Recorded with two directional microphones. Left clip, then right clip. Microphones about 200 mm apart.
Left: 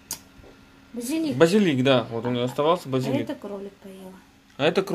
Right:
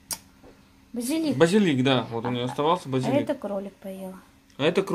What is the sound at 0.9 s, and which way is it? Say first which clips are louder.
Speech: even; 45° right (ahead or behind).